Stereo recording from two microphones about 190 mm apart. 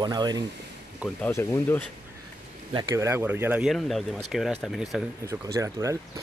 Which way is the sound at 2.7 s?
15° right (ahead or behind).